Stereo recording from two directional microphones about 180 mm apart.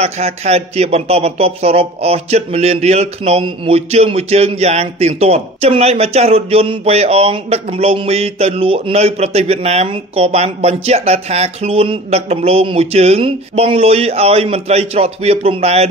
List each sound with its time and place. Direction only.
0.0 s a man's voice: 35° right (ahead or behind)